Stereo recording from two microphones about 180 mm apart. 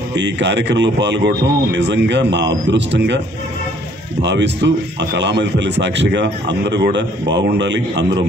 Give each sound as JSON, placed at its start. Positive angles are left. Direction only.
{"t": 0.1, "sound": "a man's voice", "side_deg": -75}
{"t": 4.2, "sound": "a man's voice", "side_deg": -75}